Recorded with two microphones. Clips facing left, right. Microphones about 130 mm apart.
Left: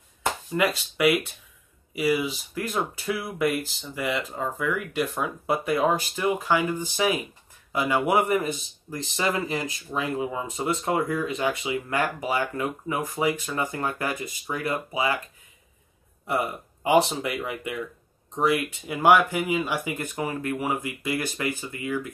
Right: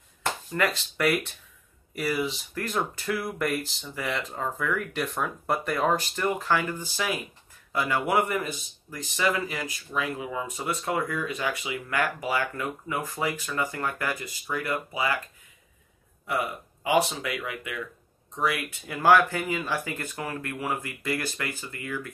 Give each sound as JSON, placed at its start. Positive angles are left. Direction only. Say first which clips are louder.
{"t": 0.2, "sound": "speech", "louder": "left 2 dB", "side_deg": 15}
{"t": 16.3, "sound": "speech", "louder": "left 2 dB", "side_deg": 25}